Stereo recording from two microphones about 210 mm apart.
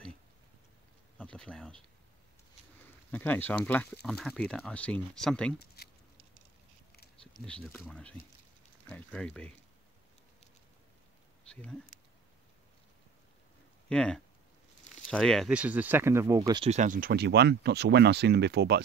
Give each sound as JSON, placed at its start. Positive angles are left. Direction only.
{"t": 1.1, "sound": "insect", "side_deg": 5}
{"t": 3.1, "sound": "speech", "side_deg": 10}
{"t": 5.8, "sound": "patter", "side_deg": 50}
{"t": 7.4, "sound": "speech", "side_deg": 5}
{"t": 11.4, "sound": "a sound", "side_deg": 5}
{"t": 13.8, "sound": "speech", "side_deg": 5}
{"t": 16.7, "sound": "speech", "side_deg": -40}